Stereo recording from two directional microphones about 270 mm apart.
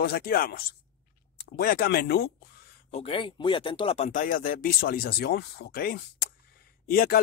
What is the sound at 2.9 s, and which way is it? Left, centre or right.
Speech, centre.